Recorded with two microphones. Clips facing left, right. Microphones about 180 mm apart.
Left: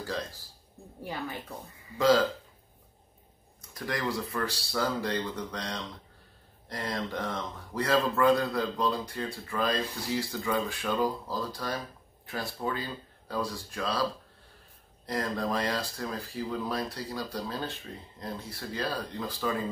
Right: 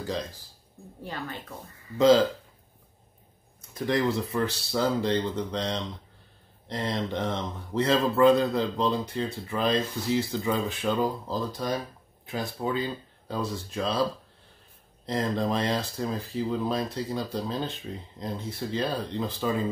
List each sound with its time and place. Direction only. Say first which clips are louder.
0.0 s speech: right 3 dB; 20° right (ahead or behind)
1.0 s speech: even; 10° left (ahead or behind)
2.0 s speech: right 4 dB; 20° right (ahead or behind)
3.7 s speech: right 6 dB; 25° right (ahead or behind)
15.0 s speech: right 4 dB; 25° right (ahead or behind)